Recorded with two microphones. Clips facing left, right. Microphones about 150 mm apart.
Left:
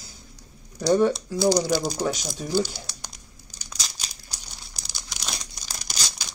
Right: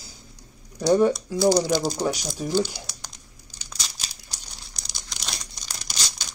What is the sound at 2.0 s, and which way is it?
Speech, 10° right (ahead or behind).